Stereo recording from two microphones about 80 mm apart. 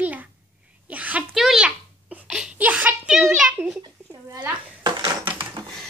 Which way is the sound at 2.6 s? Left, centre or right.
Right.